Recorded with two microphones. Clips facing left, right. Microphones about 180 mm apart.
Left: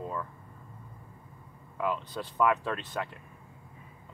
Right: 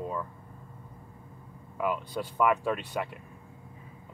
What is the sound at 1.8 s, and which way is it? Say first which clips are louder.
Speech: right 2 dB; 10° right (ahead or behind).